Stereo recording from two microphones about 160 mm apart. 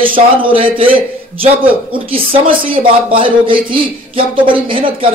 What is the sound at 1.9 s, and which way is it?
Speech, 35° right (ahead or behind).